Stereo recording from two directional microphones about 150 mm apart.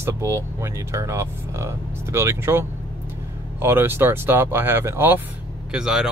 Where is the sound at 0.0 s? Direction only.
15° right (ahead or behind).